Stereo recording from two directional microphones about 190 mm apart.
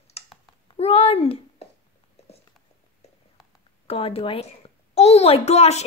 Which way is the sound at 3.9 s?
30° left (ahead or behind).